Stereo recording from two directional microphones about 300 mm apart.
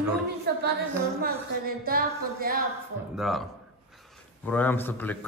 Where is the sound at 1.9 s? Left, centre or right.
Right.